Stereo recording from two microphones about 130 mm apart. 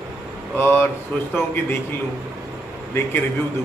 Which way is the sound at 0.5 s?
15° left (ahead or behind).